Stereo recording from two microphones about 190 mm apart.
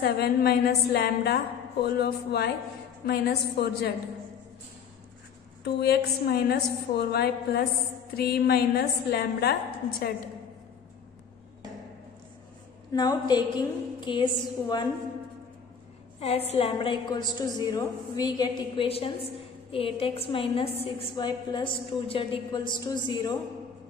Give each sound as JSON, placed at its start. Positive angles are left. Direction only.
{"t": 0.0, "sound": "a woman's voice", "side_deg": 55}
{"t": 5.6, "sound": "a woman's voice", "side_deg": 55}
{"t": 12.9, "sound": "a woman's voice", "side_deg": 20}
{"t": 16.2, "sound": "a woman's voice", "side_deg": 35}